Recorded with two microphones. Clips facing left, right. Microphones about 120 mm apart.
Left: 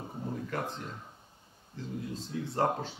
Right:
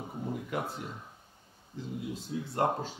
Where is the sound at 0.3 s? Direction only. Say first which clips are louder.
Even; 10° right (ahead or behind).